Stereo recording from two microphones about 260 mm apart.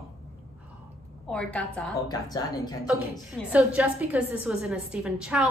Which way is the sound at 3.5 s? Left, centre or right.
Centre.